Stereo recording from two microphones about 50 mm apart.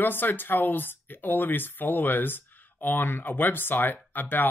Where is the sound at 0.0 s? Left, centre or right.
Left.